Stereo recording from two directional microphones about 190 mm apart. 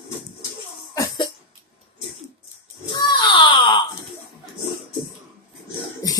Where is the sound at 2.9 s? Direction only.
25° left (ahead or behind).